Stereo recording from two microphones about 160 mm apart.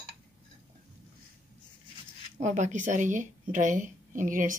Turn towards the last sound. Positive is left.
turn(degrees=-55)  # may be behind; listen again after turning